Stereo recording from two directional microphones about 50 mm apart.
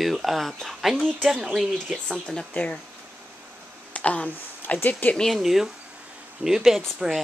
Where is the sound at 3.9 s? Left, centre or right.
Left.